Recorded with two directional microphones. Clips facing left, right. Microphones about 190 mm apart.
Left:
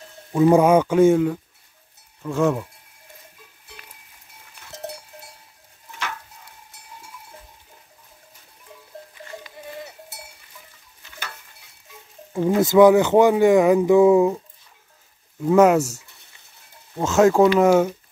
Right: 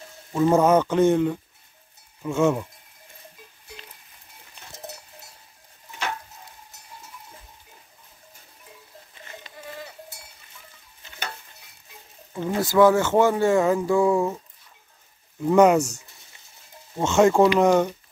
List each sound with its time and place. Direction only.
0.3 s speech: 10° left (ahead or behind)
11.1 s stir: 20° right (ahead or behind)
12.4 s speech: 20° left (ahead or behind)
15.4 s speech: centre (ahead or behind)
17.0 s speech: centre (ahead or behind)